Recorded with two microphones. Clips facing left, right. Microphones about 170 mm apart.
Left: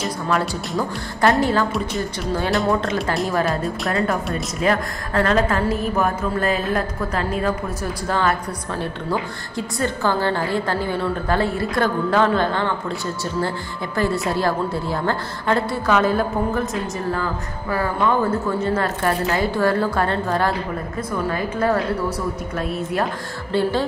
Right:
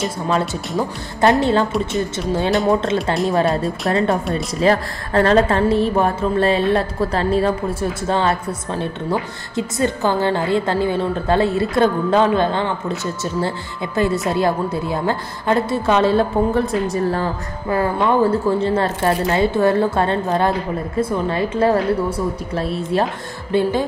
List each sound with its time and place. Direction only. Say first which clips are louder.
0.3 s a woman's voice: right 1 dB; 20° right (ahead or behind)
23.5 s speech: right 2 dB; 15° right (ahead or behind)